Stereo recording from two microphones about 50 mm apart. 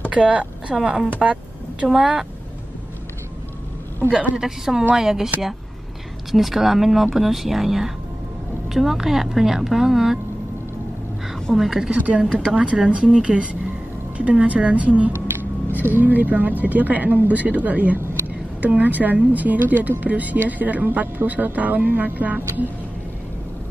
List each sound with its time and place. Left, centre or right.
0.1 s a woman's voice: right
1.2 s a sound: right
1.9 s speech: centre
4.4 s speech: centre
6.3 s speech: centre
11.5 s speech: centre
11.9 s speech: right
12.4 s speech: centre
15.8 s speech: right